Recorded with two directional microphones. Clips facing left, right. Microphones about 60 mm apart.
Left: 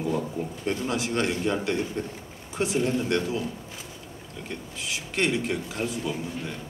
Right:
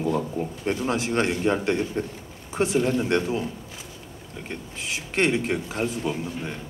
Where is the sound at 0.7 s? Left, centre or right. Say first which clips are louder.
Right 3 dB; right.